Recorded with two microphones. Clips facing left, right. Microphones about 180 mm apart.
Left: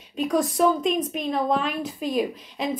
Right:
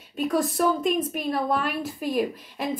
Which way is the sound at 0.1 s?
5° right (ahead or behind).